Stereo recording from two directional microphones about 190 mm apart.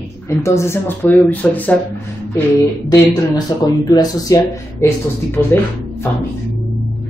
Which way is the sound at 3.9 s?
20° left (ahead or behind).